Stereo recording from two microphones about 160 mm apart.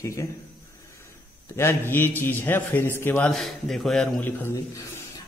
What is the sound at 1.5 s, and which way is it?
A man's voice, 15° left (ahead or behind).